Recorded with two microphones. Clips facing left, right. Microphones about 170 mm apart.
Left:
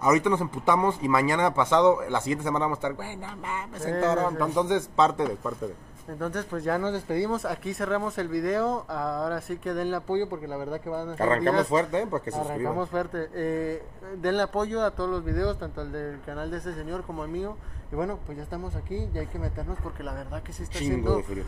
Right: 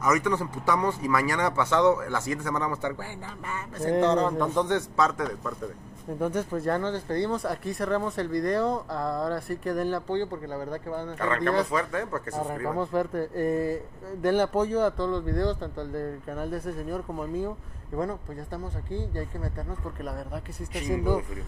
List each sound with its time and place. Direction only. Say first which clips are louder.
0.0 s speech: left 3 dB; 20° left (ahead or behind)
4.0 s speech: even; 5° left (ahead or behind)
4.9 s speech: left 3 dB; 25° left (ahead or behind)
6.1 s speech: right 3 dB; 10° right (ahead or behind)
6.8 s speech: left 1 dB; 10° left (ahead or behind)
11.1 s speech: left 3 dB; 30° left (ahead or behind)
12.7 s speech: right 1 dB; centre (ahead or behind)
21.1 s speech: even; 20° left (ahead or behind)